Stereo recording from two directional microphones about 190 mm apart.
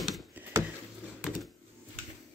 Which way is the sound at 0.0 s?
5° right (ahead or behind).